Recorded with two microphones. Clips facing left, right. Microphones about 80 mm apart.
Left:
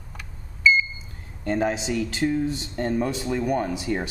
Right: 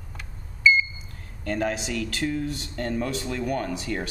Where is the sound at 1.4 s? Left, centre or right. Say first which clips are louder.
Left 3 dB; left.